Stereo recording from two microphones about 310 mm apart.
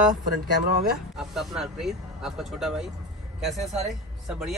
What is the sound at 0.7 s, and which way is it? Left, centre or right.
Speech, right.